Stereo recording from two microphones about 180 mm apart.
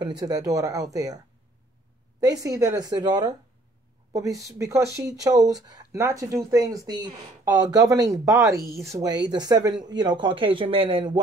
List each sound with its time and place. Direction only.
0.0 s speech: 20° right (ahead or behind)